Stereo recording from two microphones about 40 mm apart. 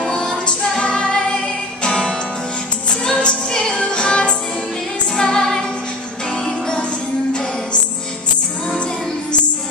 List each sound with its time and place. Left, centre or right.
0.0 s music: centre
5.1 s music: centre
6.3 s music: left